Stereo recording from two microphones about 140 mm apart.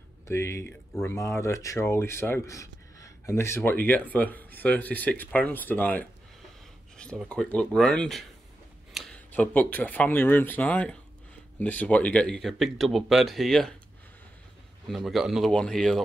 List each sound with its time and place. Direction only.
0.3 s speech: 20° left (ahead or behind); by 8.3 s 5° left (ahead or behind)
8.9 s a sound: centre (ahead or behind)
9.3 s speech: 10° left (ahead or behind)
14.9 s speech: centre (ahead or behind)